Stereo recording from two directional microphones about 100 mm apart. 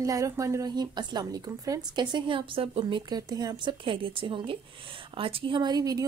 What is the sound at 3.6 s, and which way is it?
A woman's voice, 60° right (ahead or behind).